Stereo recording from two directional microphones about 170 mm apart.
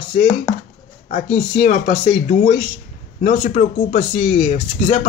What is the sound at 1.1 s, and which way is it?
Speech, 45° left (ahead or behind).